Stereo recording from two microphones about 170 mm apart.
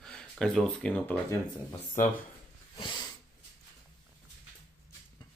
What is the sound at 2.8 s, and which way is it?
Sniff, 25° left (ahead or behind).